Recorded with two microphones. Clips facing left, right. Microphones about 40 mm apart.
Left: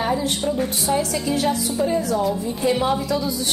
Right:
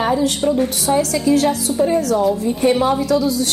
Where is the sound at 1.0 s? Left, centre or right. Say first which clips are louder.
Right 7 dB; right.